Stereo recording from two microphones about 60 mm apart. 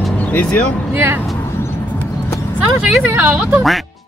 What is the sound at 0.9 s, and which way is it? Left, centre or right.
Speech, right.